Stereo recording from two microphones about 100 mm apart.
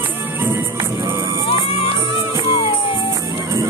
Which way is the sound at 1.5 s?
70° left (ahead or behind).